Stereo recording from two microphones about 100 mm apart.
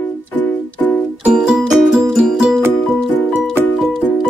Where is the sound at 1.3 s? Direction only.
5° right (ahead or behind).